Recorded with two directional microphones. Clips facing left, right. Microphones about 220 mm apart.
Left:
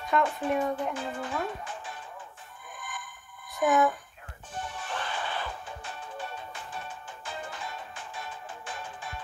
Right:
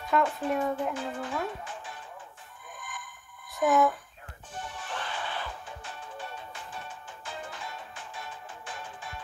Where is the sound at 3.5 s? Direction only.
Centre (ahead or behind).